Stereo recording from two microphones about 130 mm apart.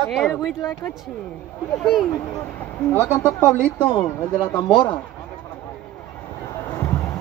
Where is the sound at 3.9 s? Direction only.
30° left (ahead or behind).